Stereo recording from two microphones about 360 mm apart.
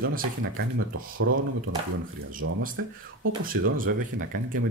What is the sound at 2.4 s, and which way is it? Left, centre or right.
Speech, right.